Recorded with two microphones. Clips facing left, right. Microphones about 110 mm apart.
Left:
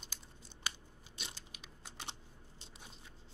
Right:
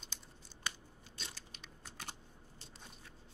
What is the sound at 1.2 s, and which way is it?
Biting, 15° left (ahead or behind).